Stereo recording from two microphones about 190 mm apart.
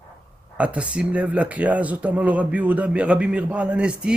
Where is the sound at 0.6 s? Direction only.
5° right (ahead or behind).